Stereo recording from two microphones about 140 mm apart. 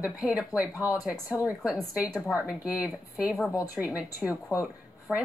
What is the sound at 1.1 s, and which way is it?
Speech, 25° left (ahead or behind).